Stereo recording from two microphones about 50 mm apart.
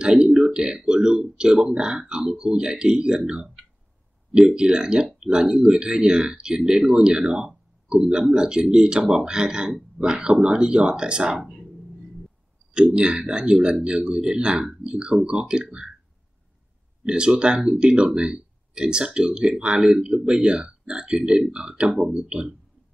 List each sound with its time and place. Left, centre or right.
0.0 s speech: centre
12.7 s speech: centre
17.0 s speech: centre